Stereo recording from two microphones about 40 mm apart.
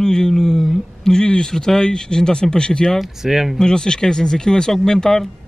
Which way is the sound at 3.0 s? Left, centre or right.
Centre.